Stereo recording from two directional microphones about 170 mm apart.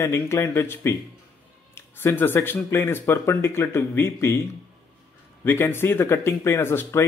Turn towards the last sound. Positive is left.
turn(degrees=15)  # may be behind; listen again after turning